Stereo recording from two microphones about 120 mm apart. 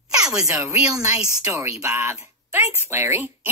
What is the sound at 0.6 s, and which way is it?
A woman's voice, 15° right (ahead or behind).